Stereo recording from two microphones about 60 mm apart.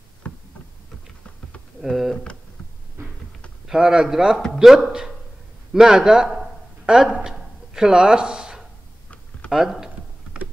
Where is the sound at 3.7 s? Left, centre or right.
Centre.